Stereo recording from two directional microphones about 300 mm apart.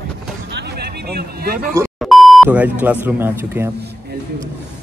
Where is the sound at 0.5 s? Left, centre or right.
Right.